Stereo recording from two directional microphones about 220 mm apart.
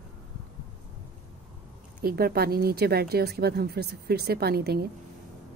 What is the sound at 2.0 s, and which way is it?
A woman's voice, 45° right (ahead or behind).